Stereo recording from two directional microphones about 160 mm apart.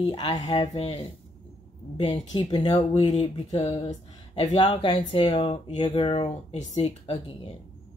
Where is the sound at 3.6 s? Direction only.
40° left (ahead or behind).